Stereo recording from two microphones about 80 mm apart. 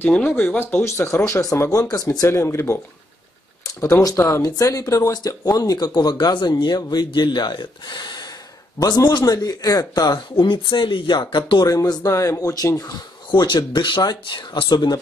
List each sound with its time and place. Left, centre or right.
0.0 s speech: left
0.8 s speech: left
3.6 s speech: left
5.9 s speech: left
8.7 s speech: left
10.4 s speech: left
11.6 s speech: left
13.3 s speech: left